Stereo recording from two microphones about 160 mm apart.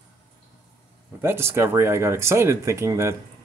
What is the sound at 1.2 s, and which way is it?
Speech, 15° right (ahead or behind).